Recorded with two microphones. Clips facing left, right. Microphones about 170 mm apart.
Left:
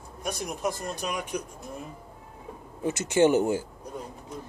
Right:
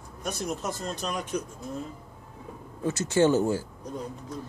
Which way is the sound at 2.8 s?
20° left (ahead or behind).